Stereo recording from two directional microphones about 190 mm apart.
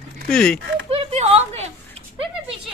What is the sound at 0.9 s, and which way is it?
Speech, 35° right (ahead or behind).